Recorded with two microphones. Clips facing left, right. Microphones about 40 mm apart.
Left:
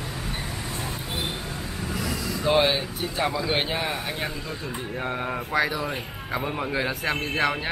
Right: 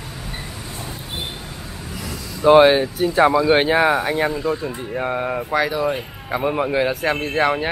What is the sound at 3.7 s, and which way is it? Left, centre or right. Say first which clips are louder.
Speech: right 12 dB; right.